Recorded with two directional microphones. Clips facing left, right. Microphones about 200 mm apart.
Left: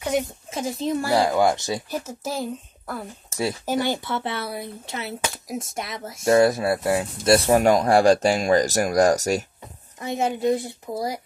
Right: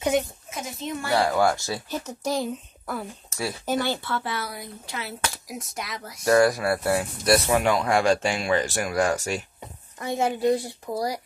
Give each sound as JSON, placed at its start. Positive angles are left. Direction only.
{"t": 0.1, "sound": "speech", "side_deg": 0}
{"t": 0.5, "sound": "speech", "side_deg": 30}
{"t": 1.2, "sound": "speech", "side_deg": 15}
{"t": 2.0, "sound": "speech", "side_deg": 5}
{"t": 3.6, "sound": "speech", "side_deg": 15}
{"t": 7.3, "sound": "speech", "side_deg": 40}
{"t": 9.9, "sound": "speech", "side_deg": 20}